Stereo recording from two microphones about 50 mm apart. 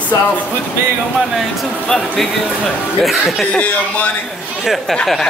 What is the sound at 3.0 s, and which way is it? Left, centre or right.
Speech, centre.